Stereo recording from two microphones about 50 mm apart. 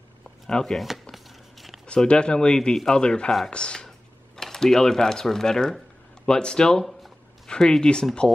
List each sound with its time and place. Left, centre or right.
0.5 s speech: centre
0.7 s chopping: centre
1.1 s a sound: centre
2.0 s speech: centre
3.4 s a sound: centre
4.4 s speech: centre